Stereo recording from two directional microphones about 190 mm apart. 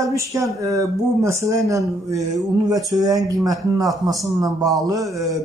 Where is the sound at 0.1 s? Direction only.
15° right (ahead or behind).